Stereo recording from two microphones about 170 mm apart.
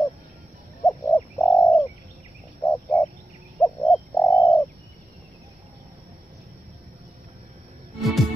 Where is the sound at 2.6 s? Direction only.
15° left (ahead or behind).